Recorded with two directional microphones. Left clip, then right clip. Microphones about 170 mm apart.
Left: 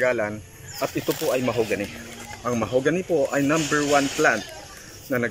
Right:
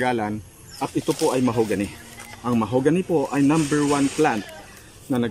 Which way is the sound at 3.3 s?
35° right (ahead or behind).